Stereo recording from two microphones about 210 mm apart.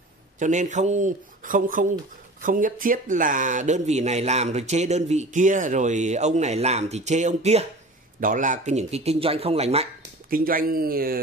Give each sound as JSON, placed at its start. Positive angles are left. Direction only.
{"t": 0.4, "sound": "speech", "side_deg": -35}
{"t": 10.3, "sound": "speech", "side_deg": -45}